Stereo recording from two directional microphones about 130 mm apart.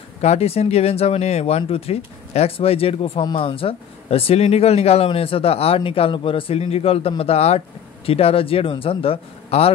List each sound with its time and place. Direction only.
0.2 s speech: 55° left (ahead or behind)